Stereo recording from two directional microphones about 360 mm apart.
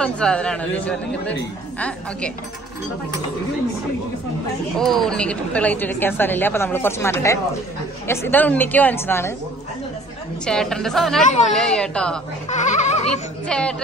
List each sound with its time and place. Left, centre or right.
0.0 s speech: centre
4.7 s speech: centre
10.4 s speech: centre
12.4 s speech: centre
13.5 s speech: centre